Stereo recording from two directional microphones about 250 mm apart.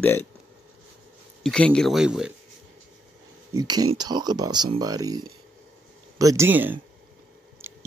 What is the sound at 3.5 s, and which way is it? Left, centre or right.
Speech, centre.